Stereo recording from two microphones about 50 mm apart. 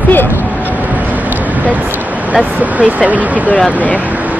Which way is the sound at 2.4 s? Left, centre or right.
Right.